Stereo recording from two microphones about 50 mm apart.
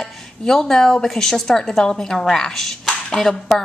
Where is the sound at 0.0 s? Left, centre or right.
Centre.